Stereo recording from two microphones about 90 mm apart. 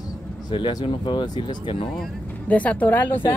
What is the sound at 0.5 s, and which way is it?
Speech, 60° left (ahead or behind).